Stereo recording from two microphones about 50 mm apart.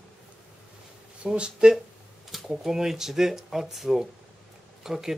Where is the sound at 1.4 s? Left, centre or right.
Centre.